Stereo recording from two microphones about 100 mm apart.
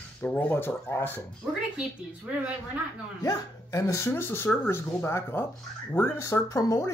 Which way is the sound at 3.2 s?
30° left (ahead or behind).